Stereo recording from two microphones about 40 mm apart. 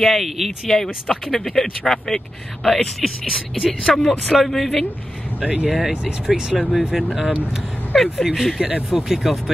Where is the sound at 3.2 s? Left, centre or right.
Centre.